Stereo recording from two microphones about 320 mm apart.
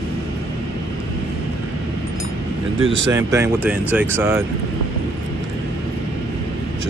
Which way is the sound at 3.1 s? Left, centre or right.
Centre.